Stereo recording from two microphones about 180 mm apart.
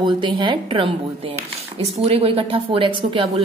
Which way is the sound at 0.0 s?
25° right (ahead or behind).